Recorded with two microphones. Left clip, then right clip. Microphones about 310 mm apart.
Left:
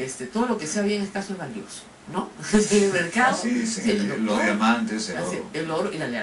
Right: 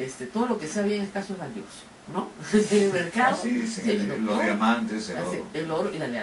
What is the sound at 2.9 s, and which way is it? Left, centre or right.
A man's voice, centre.